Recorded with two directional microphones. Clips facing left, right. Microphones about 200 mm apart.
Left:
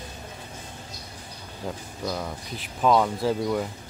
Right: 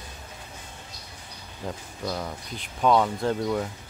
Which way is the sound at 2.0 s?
Centre (ahead or behind).